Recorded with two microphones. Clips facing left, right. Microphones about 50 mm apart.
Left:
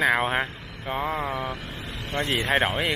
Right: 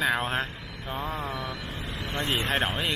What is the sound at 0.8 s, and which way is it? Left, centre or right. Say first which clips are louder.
Speech: left 5 dB; left.